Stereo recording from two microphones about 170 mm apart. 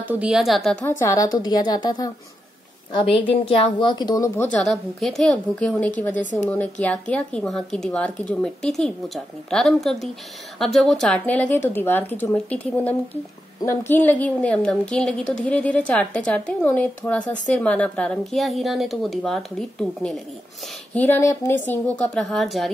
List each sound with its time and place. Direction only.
0.0 s a woman's voice: 10° right (ahead or behind)
0.9 s speech: 20° left (ahead or behind)
4.5 s a woman's voice: 5° left (ahead or behind)